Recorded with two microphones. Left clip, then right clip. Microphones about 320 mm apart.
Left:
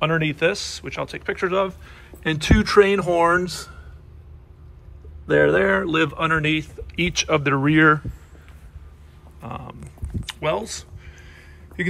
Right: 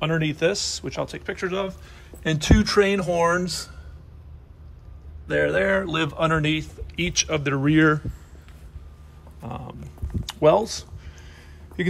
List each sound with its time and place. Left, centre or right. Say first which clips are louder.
0.0 s speech: left 3 dB; centre
5.3 s speech: left 4 dB; centre
9.4 s speech: left 2 dB; centre
10.2 s a sound: right 6 dB; centre